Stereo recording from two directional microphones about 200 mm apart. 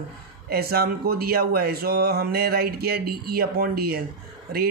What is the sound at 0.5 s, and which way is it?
Speech, 50° right (ahead or behind).